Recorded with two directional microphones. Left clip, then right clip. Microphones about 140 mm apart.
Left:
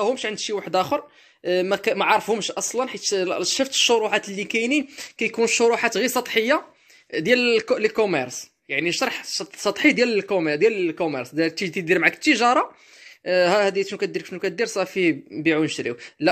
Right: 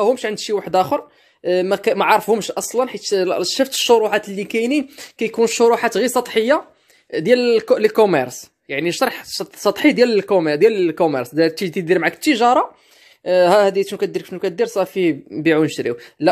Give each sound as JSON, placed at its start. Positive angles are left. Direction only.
{"t": 0.0, "sound": "speech", "side_deg": -40}
{"t": 7.9, "sound": "speech", "side_deg": -45}
{"t": 15.3, "sound": "speech", "side_deg": -45}